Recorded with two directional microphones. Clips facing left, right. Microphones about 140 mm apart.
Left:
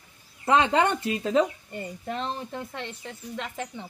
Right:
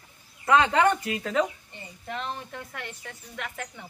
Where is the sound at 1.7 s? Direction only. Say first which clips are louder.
Left 5 dB; 40° left (ahead or behind); by 3.8 s 25° left (ahead or behind).